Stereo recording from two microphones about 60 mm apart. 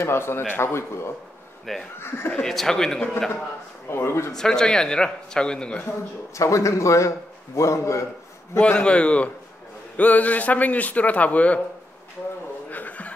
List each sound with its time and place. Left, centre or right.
0.0 s a man's voice: left
2.3 s a man's voice: centre
3.9 s a man's voice: left
4.4 s a man's voice: centre
6.3 s a man's voice: left
8.5 s a man's voice: centre
12.6 s chuckle: left